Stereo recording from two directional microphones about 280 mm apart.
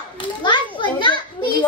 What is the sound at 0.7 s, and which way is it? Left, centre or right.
Children playing, centre.